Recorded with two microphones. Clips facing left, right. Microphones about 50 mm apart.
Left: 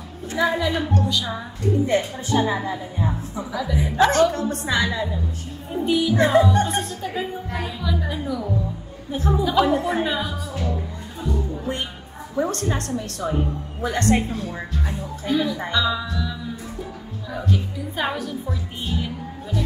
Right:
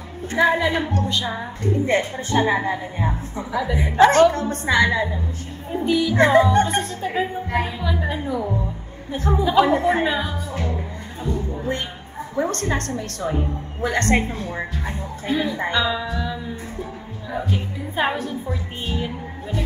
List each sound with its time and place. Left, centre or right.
0.3 s a woman's voice: right
15.9 s a woman's voice: centre; by 18.5 s right
18.5 s a woman's voice: right